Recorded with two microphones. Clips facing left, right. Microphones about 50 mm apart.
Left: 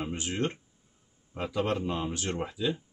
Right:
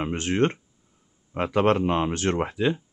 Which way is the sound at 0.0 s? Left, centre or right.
Right.